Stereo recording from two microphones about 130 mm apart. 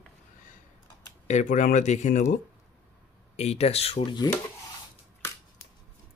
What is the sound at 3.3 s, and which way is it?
Speech, 55° left (ahead or behind).